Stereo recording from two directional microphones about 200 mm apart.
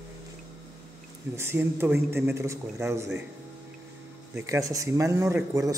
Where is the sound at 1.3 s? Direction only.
10° right (ahead or behind).